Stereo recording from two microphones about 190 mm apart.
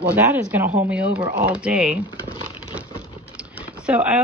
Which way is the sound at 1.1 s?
25° right (ahead or behind).